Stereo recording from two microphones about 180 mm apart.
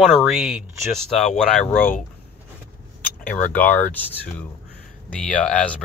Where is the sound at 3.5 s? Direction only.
10° left (ahead or behind).